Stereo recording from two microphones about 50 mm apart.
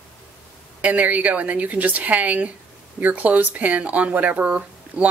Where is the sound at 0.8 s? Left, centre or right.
Right.